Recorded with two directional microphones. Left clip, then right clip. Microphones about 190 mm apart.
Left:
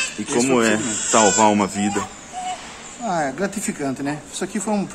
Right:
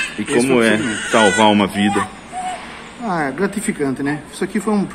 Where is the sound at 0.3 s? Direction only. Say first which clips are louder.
Right 4 dB; 15° left (ahead or behind).